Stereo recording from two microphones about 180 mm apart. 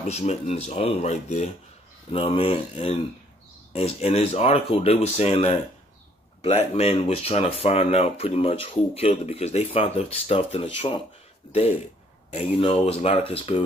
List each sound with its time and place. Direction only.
0.0 s speech: 40° left (ahead or behind)